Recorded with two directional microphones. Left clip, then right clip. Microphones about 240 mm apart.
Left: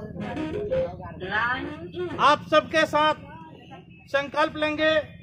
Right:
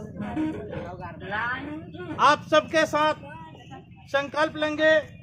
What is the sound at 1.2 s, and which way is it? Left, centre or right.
Speech, left.